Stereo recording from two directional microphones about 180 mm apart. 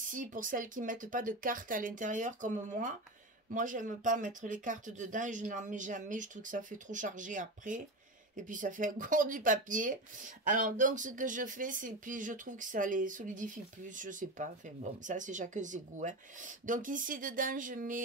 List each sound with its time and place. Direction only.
0.1 s speech: 45° right (ahead or behind)